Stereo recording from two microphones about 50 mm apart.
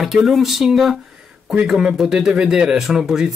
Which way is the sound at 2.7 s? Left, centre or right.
Centre.